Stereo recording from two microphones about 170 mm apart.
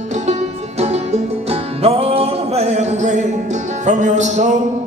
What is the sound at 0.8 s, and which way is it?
Music, 40° right (ahead or behind).